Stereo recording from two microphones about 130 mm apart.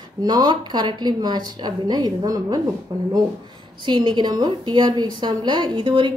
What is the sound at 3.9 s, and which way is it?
A woman's voice, 35° right (ahead or behind).